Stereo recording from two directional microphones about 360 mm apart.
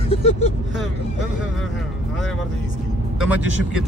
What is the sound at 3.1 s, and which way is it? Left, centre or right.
Speech, centre.